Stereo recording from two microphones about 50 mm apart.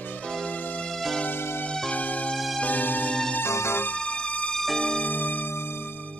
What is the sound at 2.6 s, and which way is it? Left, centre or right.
Music, left.